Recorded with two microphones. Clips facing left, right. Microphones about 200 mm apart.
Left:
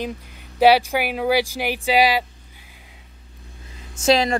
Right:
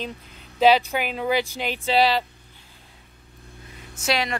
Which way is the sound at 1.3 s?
90° left.